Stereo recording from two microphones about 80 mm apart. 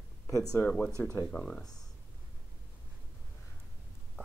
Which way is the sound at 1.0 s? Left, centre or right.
Left.